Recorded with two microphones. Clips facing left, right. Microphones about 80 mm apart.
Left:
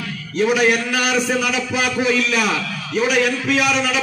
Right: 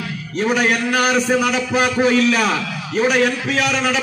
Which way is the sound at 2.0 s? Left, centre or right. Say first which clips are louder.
Right 3 dB; right.